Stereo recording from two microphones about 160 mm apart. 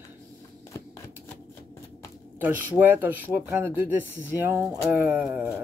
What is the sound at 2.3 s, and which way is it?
Speech, 10° right (ahead or behind).